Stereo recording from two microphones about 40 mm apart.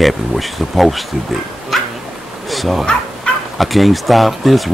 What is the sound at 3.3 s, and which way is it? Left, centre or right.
Fowl, left.